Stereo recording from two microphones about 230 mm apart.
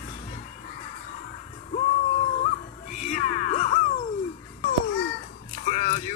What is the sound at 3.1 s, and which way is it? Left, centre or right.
Music, left.